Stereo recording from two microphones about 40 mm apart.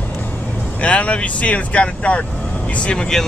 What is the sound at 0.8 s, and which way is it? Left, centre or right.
Speech, left.